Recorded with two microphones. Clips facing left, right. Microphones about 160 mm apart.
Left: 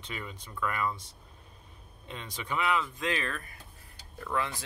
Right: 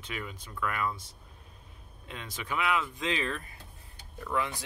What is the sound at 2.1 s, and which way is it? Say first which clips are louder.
Speech: even; 5° right (ahead or behind).